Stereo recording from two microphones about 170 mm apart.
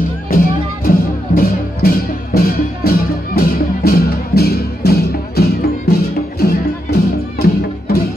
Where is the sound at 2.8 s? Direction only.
65° left (ahead or behind).